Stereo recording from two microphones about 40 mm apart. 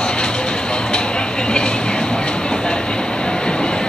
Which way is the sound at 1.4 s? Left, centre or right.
Left.